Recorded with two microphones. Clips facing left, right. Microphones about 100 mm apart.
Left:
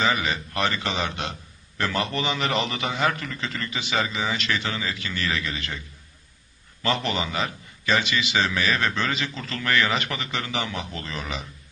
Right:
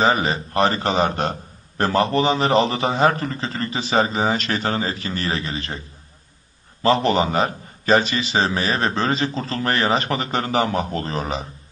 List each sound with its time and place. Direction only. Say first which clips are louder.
0.0 s a man's voice: right 6 dB; 35° right (ahead or behind)